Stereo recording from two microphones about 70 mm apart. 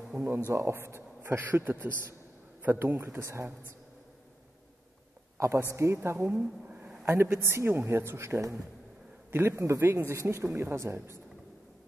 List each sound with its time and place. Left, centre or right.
0.1 s speech: right
0.5 s speech: right
1.4 s speech: right
5.7 s speech: right
6.7 s a sound: centre
7.1 s speech: right